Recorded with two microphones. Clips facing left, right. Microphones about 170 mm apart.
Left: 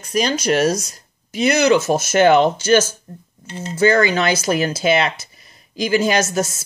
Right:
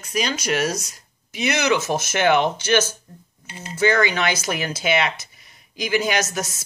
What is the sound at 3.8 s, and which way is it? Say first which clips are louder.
Speech: left 4 dB; 35° left (ahead or behind).